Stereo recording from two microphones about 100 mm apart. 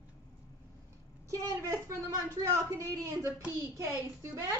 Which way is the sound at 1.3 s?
30° right (ahead or behind).